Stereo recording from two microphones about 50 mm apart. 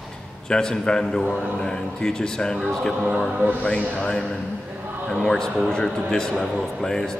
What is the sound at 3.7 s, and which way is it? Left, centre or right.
Speech, left.